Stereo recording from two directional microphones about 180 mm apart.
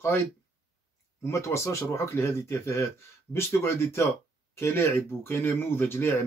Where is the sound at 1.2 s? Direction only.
15° left (ahead or behind).